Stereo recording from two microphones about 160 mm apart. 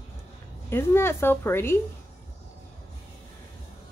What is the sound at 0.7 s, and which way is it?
Speech, 15° left (ahead or behind).